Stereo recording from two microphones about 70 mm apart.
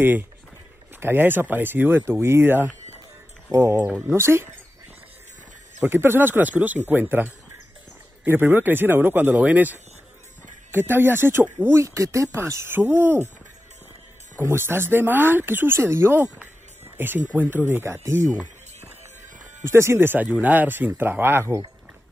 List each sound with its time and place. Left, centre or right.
0.0 s speech: right
4.1 s speech: right
5.9 s speech: right
8.3 s speech: right
11.8 s speech: right
12.6 s speech: right
14.4 s speech: right
17.6 s speech: right
19.6 s speech: right